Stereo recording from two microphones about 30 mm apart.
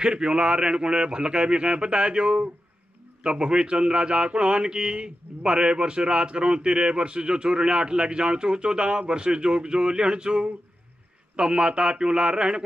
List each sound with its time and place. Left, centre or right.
0.0 s a man's voice: right